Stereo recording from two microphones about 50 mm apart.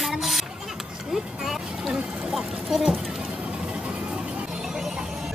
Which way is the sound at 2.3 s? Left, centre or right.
Centre.